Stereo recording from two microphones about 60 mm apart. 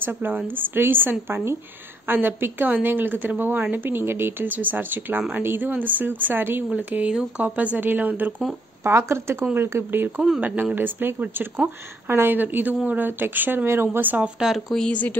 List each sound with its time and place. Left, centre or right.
0.0 s a woman's voice: right
7.1 s speech: centre
7.4 s a woman's voice: right
8.8 s speech: right
14.2 s speech: centre
14.9 s speech: left